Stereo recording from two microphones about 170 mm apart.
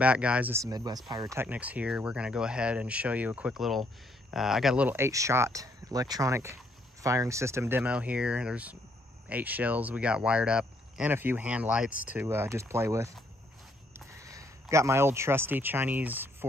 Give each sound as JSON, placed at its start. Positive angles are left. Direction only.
{"t": 0.0, "sound": "speech", "side_deg": -5}